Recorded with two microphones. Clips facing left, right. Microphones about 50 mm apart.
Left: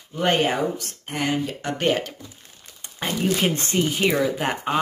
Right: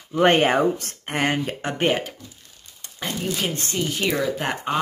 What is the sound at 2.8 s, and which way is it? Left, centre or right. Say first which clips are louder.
Crumpling: left 3 dB; centre.